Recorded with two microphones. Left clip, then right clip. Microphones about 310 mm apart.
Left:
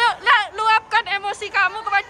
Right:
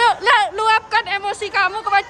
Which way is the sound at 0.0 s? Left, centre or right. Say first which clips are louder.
Right 2 dB; centre.